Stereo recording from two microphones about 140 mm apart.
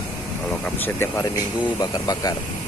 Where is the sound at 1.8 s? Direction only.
25° left (ahead or behind).